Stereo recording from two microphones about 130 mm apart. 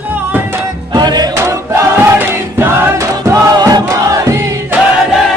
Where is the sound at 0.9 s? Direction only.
35° right (ahead or behind).